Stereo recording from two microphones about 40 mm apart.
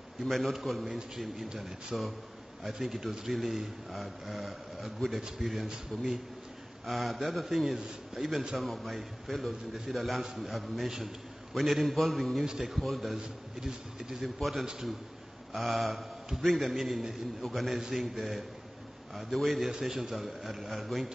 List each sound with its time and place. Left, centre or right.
0.2 s a man's voice: centre
6.9 s speech: centre
8.5 s a man's voice: centre
13.6 s a man's voice: centre
14.2 s a man's voice: centre